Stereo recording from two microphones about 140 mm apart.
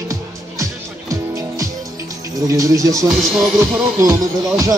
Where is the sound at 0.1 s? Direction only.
20° right (ahead or behind).